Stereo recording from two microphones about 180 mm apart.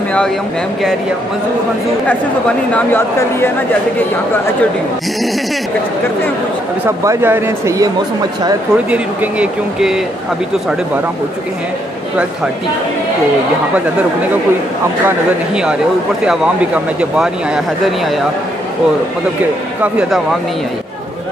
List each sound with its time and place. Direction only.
2.7 s speech: 10° left (ahead or behind)
7.1 s speech: 10° right (ahead or behind)
8.9 s speech: 5° right (ahead or behind)
15.0 s speech: 5° right (ahead or behind)
19.8 s speech: 5° right (ahead or behind)